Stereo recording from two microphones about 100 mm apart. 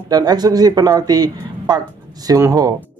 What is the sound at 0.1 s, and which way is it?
Speech, 40° right (ahead or behind).